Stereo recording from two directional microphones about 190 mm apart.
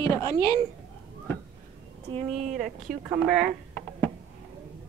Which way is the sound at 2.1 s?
35° right (ahead or behind).